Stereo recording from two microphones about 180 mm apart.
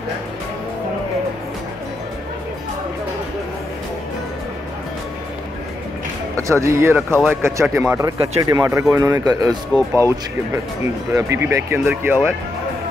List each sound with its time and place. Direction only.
6.3 s a man's voice: 15° right (ahead or behind)